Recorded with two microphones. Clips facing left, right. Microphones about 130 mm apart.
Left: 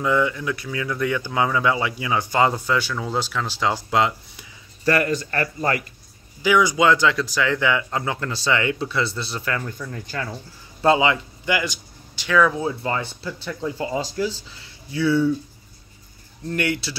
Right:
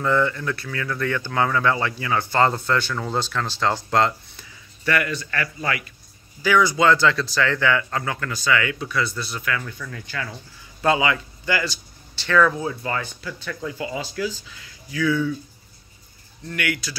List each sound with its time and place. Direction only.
0.0 s speech: 10° left (ahead or behind)
4.8 s speech: 35° left (ahead or behind)
6.4 s speech: 15° left (ahead or behind); by 10.3 s 40° left (ahead or behind)
10.8 s speech: 25° left (ahead or behind)
12.5 s speech: 25° left (ahead or behind)
13.7 s speech: 35° left (ahead or behind)
16.4 s speech: 30° left (ahead or behind)